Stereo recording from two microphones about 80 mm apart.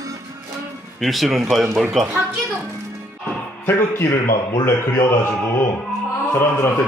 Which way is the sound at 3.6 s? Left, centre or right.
Left.